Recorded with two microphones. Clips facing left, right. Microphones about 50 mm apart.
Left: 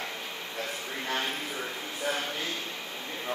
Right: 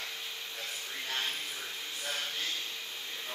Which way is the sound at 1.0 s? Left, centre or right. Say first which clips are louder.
Left 5 dB; left.